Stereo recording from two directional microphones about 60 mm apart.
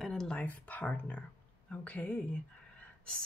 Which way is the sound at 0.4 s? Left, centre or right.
Left.